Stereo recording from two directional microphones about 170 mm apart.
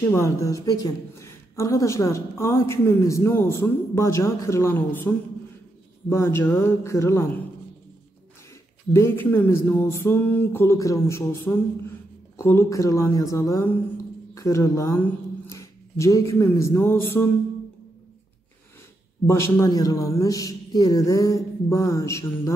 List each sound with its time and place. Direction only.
0.1 s a woman's voice: 20° left (ahead or behind)
8.9 s a woman's voice: 15° left (ahead or behind)
19.2 s a man's voice: 15° left (ahead or behind)